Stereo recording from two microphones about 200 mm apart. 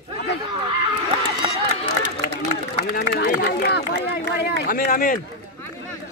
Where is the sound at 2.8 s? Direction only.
50° left (ahead or behind).